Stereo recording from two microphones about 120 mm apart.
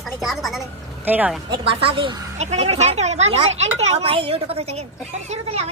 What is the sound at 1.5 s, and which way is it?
Speech, 50° right (ahead or behind).